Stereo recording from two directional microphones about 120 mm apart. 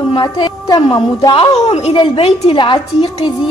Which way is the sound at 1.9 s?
45° left (ahead or behind).